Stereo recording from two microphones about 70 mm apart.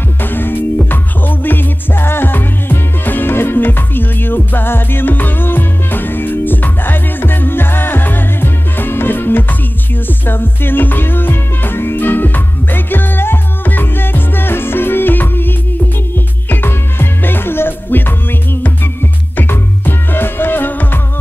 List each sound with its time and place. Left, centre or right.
0.2 s music: left
19.3 s music: left